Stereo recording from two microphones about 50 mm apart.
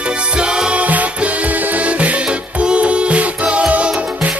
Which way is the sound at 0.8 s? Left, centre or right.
Right.